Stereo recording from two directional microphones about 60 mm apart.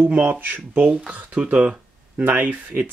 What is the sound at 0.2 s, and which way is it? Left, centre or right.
Speech, right.